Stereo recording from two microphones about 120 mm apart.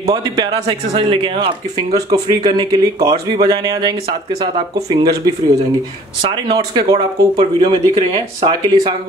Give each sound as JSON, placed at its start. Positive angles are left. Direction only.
{"t": 0.0, "sound": "a man's voice", "side_deg": -30}
{"t": 2.0, "sound": "speech", "side_deg": -35}
{"t": 4.9, "sound": "a man's voice", "side_deg": -35}